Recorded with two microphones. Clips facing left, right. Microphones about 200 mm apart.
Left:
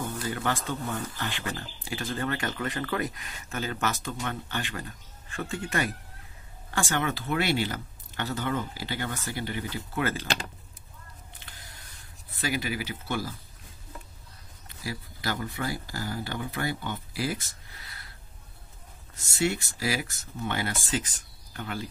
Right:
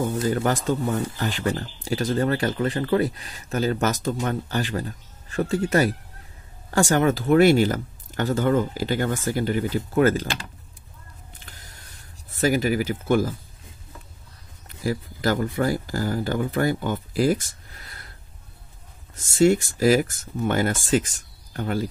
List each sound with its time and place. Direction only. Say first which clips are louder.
0.1 s speech: right 8 dB; 45° right (ahead or behind)
12.3 s speech: right 10 dB; 45° right (ahead or behind)
14.8 s speech: right 11 dB; 45° right (ahead or behind)
19.1 s speech: right 10 dB; 45° right (ahead or behind)